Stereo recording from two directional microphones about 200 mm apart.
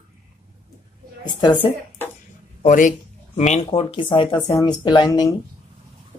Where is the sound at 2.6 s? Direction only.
40° left (ahead or behind).